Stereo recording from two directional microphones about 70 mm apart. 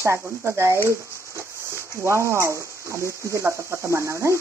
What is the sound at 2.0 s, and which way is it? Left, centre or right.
Sizzle, right.